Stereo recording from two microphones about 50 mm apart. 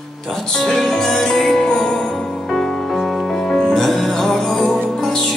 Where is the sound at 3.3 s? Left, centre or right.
Centre.